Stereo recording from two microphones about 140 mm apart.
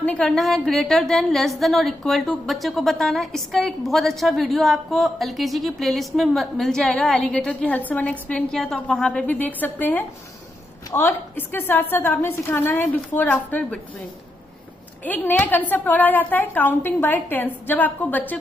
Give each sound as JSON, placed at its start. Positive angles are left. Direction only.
{"t": 0.0, "sound": "a woman's voice", "side_deg": 5}
{"t": 15.0, "sound": "a woman's voice", "side_deg": 10}